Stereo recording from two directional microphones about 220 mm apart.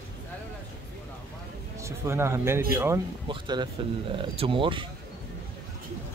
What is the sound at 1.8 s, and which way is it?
Speech, 10° right (ahead or behind).